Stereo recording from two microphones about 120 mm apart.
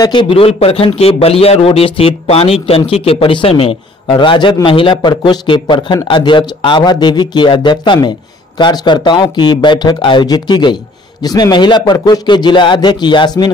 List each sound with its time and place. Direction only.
0.0 s a man's voice: 40° left (ahead or behind)